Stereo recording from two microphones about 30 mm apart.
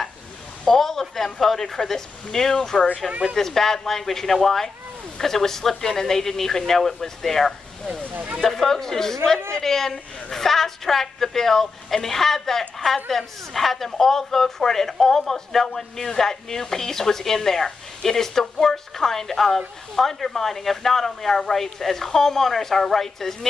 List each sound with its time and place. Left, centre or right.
0.7 s speech: centre
8.1 s speech: right
8.4 s speech: centre